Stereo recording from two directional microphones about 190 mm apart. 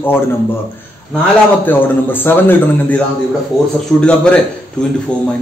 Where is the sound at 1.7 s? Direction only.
10° left (ahead or behind).